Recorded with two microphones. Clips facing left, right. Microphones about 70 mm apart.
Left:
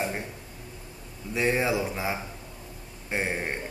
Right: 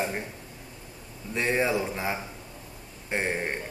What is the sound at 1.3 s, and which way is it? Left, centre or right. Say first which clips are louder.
A man's voice: even; centre.